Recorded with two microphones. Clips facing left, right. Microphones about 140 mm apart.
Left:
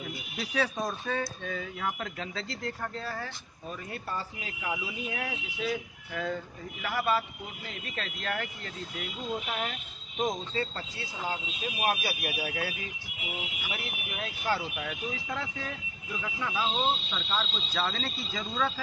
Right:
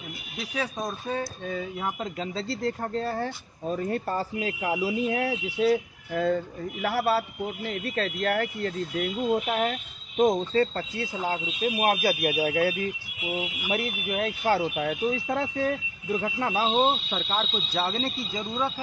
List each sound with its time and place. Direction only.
0.7 s speech: 20° right (ahead or behind); by 6.2 s 35° right (ahead or behind)
6.2 s speech: 45° right (ahead or behind)
10.6 s speech: 50° right (ahead or behind); by 18.4 s 25° right (ahead or behind)
18.4 s speech: 15° right (ahead or behind)